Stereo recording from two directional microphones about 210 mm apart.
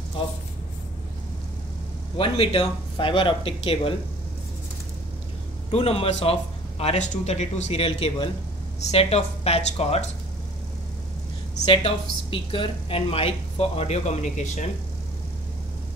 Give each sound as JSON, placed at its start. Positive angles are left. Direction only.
{"t": 2.1, "sound": "a woman's voice", "side_deg": 25}
{"t": 5.7, "sound": "a woman's voice", "side_deg": 30}
{"t": 11.6, "sound": "a woman's voice", "side_deg": 25}